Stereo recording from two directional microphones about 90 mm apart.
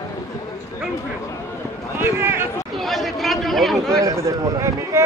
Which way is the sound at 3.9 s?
35° right (ahead or behind).